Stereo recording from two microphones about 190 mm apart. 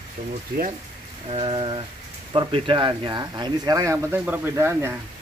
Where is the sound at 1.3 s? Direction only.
30° right (ahead or behind); by 4.9 s 15° right (ahead or behind).